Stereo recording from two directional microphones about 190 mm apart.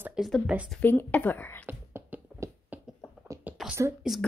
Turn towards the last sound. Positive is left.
turn(degrees=0)  # may be behind; listen again after turning